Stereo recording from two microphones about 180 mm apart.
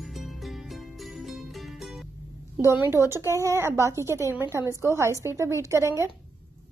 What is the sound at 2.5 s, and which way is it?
Speech, 10° right (ahead or behind).